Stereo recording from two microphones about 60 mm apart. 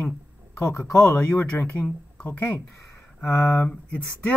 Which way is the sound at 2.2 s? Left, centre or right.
Left.